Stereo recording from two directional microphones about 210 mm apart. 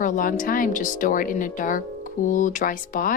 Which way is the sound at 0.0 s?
40° left (ahead or behind).